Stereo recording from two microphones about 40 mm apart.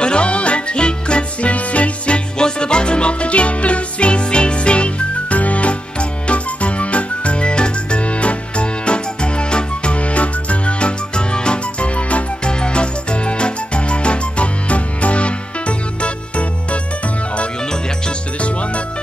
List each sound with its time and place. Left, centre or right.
0.0 s music: left